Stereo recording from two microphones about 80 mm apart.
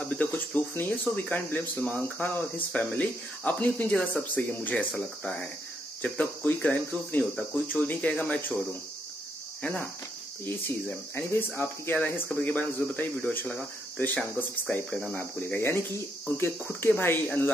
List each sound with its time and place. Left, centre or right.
0.0 s speech: centre
6.6 s speech: centre
10.4 s speech: left
15.1 s speech: left